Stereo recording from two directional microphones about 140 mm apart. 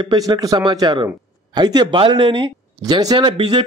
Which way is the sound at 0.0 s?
30° right (ahead or behind).